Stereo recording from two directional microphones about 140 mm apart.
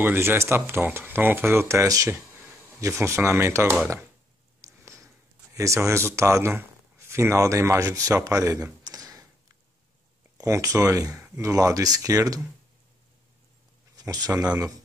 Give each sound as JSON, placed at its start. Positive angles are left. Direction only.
{"t": 0.0, "sound": "speech", "side_deg": -15}
{"t": 4.6, "sound": "a sound", "side_deg": -20}
{"t": 5.5, "sound": "speech", "side_deg": -20}
{"t": 10.3, "sound": "speech", "side_deg": -25}
{"t": 13.9, "sound": "speech", "side_deg": -30}